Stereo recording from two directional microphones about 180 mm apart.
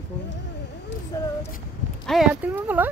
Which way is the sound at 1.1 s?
20° left (ahead or behind).